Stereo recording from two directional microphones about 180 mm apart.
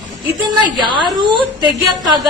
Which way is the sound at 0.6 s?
25° right (ahead or behind).